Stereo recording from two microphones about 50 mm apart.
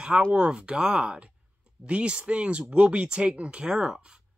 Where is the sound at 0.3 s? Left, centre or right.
Centre.